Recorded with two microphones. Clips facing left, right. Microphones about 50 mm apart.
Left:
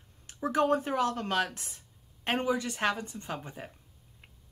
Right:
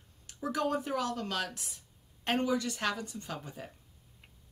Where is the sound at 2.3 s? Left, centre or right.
Left.